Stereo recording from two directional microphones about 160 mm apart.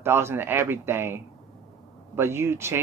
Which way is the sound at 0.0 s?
15° right (ahead or behind).